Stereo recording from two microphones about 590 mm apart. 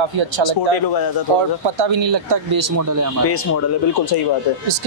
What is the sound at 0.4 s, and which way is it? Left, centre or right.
Speech, left.